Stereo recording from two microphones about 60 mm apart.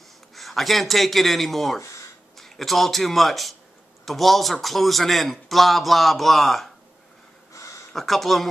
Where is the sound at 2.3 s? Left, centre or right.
Centre.